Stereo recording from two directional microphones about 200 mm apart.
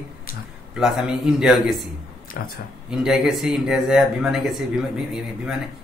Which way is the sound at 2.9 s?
5° right (ahead or behind).